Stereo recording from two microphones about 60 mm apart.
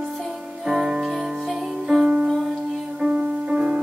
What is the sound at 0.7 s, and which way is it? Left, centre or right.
Music, centre.